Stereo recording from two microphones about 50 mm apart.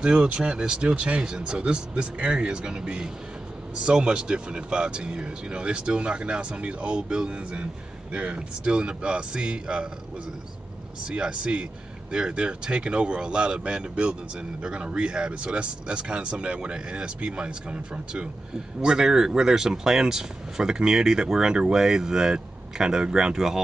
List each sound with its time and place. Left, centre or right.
0.0 s speech: centre
11.1 s speech: centre